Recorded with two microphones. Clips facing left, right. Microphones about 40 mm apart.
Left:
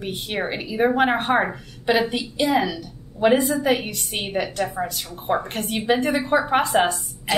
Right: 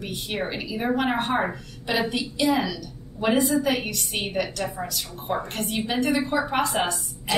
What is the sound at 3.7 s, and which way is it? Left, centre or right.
A woman's voice, left.